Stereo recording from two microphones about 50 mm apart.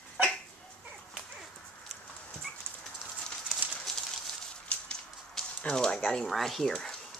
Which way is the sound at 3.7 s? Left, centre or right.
Centre.